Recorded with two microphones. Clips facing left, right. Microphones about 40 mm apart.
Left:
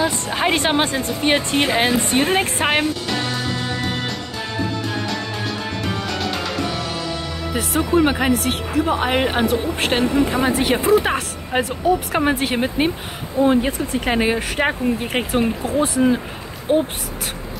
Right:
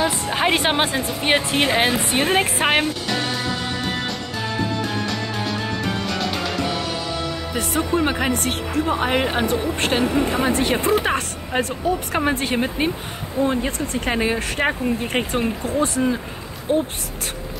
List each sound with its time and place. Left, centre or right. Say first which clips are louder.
0.0 s speech: even; centre
6.1 s music: even; centre
7.5 s a woman's voice: left 4 dB; centre
11.5 s speech: left 2 dB; left
12.3 s a woman's voice: even; centre
16.7 s speech: left 3 dB; left